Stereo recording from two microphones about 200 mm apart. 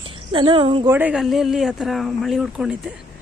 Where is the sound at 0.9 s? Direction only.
10° right (ahead or behind).